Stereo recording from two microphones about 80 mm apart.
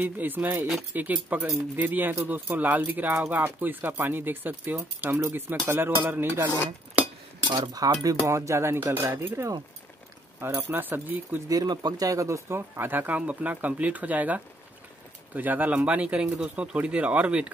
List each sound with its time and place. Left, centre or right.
0.0 s speech: right
7.7 s speech: right
10.7 s speech: right
11.4 s speech: right; by 17.5 s centre